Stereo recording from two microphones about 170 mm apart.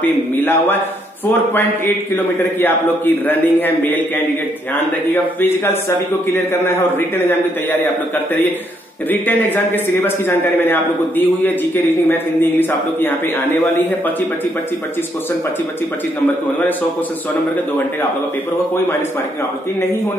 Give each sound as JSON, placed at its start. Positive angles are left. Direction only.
{"t": 0.4, "sound": "a man's voice", "side_deg": 10}
{"t": 2.1, "sound": "a man's voice", "side_deg": 10}
{"t": 9.1, "sound": "a man's voice", "side_deg": 10}